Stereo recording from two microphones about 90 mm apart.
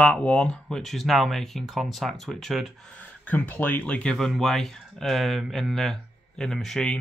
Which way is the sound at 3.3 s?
20° left (ahead or behind).